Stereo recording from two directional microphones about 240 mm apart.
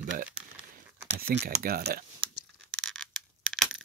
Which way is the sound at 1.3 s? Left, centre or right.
Right.